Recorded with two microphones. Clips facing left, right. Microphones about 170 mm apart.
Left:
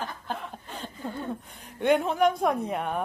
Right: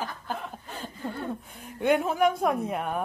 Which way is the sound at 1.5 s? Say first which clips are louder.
Left 1 dB; centre (ahead or behind).